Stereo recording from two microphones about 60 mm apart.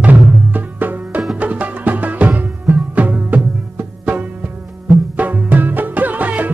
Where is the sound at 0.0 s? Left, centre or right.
Right.